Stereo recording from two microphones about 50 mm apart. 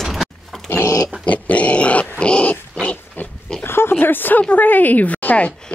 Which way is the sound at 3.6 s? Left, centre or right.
Left.